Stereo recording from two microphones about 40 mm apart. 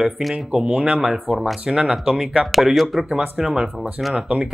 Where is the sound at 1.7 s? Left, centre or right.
Centre.